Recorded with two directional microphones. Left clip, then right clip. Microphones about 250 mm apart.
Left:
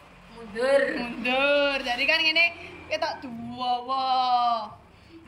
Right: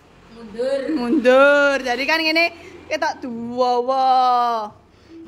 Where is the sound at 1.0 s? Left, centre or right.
Centre.